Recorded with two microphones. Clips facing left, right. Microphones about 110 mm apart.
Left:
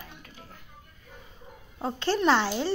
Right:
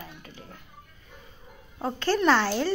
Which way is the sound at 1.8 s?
25° left (ahead or behind).